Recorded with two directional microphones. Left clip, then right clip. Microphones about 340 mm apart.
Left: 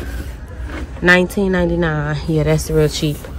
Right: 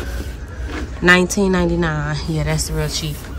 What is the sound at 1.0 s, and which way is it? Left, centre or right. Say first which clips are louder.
A woman's voice: left 1 dB; centre.